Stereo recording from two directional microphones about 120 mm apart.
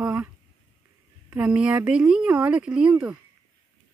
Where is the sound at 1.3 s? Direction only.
10° right (ahead or behind).